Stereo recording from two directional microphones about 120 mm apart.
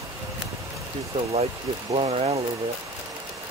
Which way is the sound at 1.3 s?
55° right (ahead or behind).